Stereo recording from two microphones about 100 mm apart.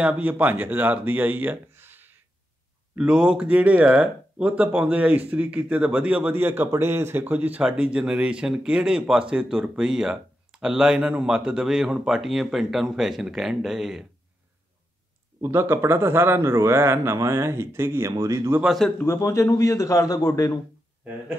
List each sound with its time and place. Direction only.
0.0 s speech: 15° right (ahead or behind)
3.0 s speech: 10° right (ahead or behind)
15.4 s a man's voice: 25° right (ahead or behind)
19.0 s a man's voice: 30° left (ahead or behind)